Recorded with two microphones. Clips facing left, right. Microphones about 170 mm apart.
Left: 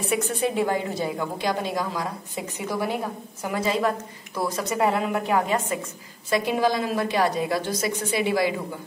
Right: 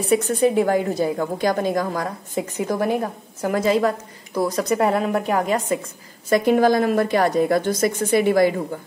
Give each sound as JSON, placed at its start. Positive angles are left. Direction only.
{"t": 0.0, "sound": "a woman's voice", "side_deg": -40}
{"t": 6.3, "sound": "a woman's voice", "side_deg": -50}